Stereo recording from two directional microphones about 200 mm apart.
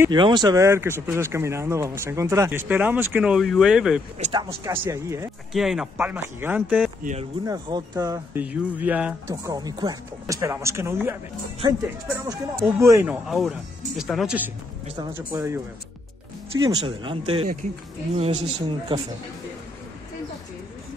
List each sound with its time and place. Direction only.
0.1 s speech: 20° right (ahead or behind); by 4.0 s 5° right (ahead or behind)
4.2 s speech: 25° right (ahead or behind)
5.5 s speech: centre (ahead or behind)
7.0 s speech: 40° right (ahead or behind)
7.4 s speech: 20° right (ahead or behind)
9.5 s speech: 20° right (ahead or behind)
16.6 s speech: 25° right (ahead or behind)